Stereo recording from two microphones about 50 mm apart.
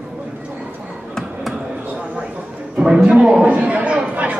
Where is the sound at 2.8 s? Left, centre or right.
Centre.